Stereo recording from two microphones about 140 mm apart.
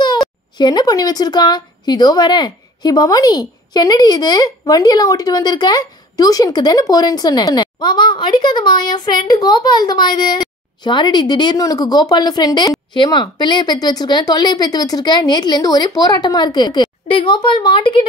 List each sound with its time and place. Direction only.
0.6 s a woman's voice: 30° left (ahead or behind)